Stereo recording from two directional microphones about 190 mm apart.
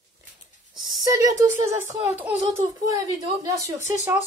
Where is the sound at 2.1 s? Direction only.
5° right (ahead or behind).